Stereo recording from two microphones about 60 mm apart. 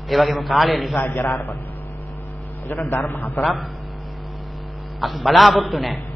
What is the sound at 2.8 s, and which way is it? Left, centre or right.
Speech, left.